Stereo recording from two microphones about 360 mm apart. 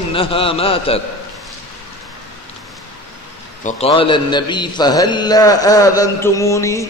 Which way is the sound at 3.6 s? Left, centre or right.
Centre.